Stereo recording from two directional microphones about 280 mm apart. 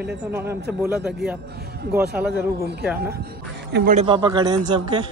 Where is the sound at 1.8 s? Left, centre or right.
Right.